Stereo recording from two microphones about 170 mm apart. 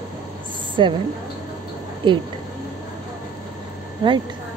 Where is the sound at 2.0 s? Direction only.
30° right (ahead or behind).